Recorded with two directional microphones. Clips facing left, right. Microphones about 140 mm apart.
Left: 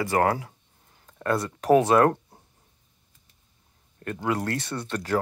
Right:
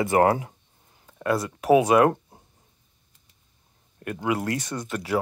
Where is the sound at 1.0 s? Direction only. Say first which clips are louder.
Right 1 dB; 10° right (ahead or behind).